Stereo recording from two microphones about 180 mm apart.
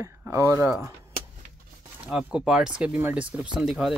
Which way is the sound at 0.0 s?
15° right (ahead or behind).